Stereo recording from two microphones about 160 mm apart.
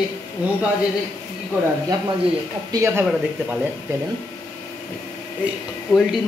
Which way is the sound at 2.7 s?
20° right (ahead or behind).